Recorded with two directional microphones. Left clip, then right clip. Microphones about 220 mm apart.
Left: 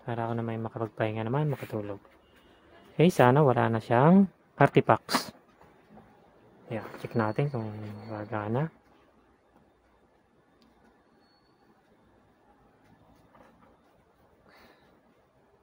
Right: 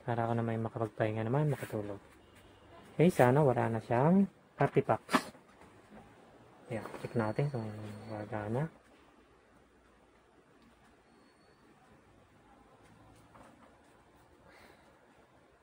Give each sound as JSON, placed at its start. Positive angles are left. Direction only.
{"t": 0.0, "sound": "speech", "side_deg": 10}
{"t": 3.0, "sound": "speech", "side_deg": 20}
{"t": 6.7, "sound": "speech", "side_deg": 25}